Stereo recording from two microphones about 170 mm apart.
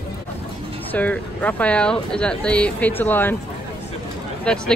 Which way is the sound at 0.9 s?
10° left (ahead or behind).